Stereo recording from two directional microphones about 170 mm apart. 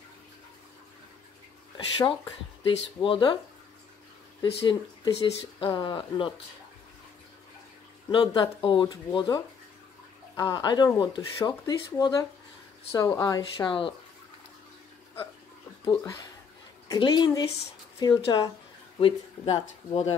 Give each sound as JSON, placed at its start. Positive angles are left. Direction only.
{"t": 2.6, "sound": "speech", "side_deg": 30}
{"t": 4.4, "sound": "speech", "side_deg": 25}
{"t": 8.3, "sound": "speech", "side_deg": 25}
{"t": 15.8, "sound": "speech", "side_deg": 20}